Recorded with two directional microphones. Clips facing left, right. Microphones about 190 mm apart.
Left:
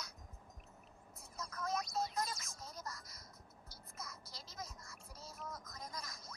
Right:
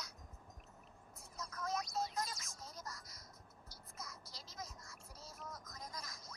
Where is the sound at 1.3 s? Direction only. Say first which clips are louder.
Left 1 dB; 55° left (ahead or behind).